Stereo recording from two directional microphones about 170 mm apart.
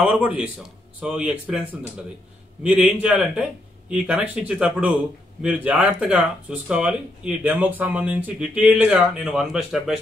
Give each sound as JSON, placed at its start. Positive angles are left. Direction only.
{"t": 0.0, "sound": "speech", "side_deg": -5}